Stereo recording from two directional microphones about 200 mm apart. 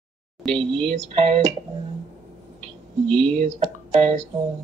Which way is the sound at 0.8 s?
30° right (ahead or behind).